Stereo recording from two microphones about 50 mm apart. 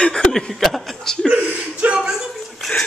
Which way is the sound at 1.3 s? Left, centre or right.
Right.